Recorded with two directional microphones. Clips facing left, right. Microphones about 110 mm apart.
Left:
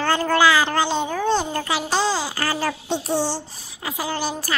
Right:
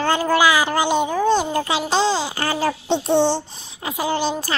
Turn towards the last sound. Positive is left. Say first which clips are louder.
# right 4 dB
turn(degrees=-20)  # may be behind; listen again after turning